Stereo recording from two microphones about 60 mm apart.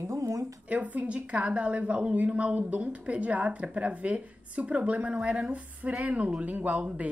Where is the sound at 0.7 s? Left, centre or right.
Right.